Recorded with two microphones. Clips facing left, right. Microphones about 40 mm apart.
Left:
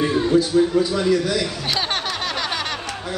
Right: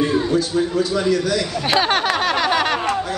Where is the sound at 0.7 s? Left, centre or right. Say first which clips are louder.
Even; centre.